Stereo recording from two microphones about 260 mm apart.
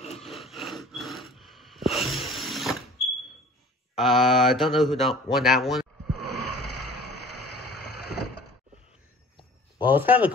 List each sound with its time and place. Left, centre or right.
0.2 s snort: centre
3.9 s speech: centre
6.0 s vehicle: left
9.8 s speech: centre